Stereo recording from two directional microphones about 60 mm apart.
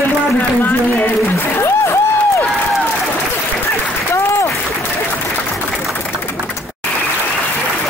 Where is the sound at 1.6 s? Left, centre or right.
Left.